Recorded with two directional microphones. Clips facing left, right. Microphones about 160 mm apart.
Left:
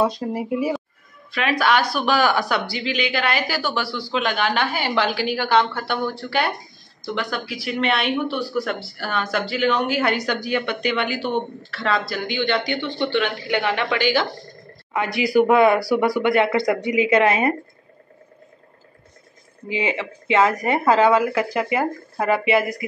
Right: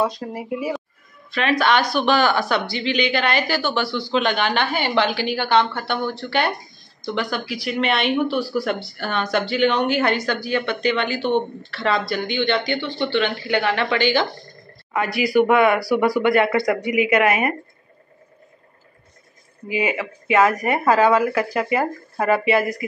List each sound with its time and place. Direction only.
0.3 s speech: 30° left (ahead or behind)
1.3 s a woman's voice: 5° left (ahead or behind)
12.7 s a woman's voice: 20° left (ahead or behind)
14.9 s speech: 20° left (ahead or behind)
16.0 s speech: 20° left (ahead or behind)
19.7 s speech: 25° left (ahead or behind)